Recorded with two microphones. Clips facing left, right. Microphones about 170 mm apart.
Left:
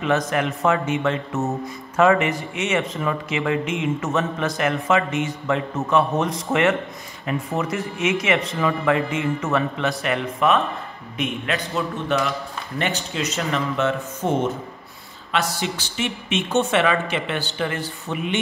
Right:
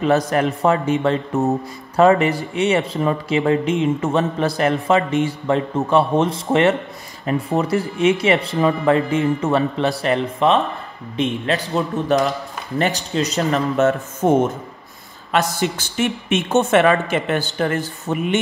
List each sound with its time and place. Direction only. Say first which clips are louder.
0.0 s a man's voice: right 4 dB; 35° right (ahead or behind)
15.3 s a woman's voice: right 5 dB; 50° right (ahead or behind)